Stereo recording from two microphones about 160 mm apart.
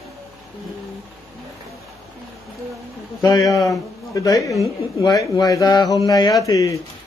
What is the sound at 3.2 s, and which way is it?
A man's voice, 20° left (ahead or behind).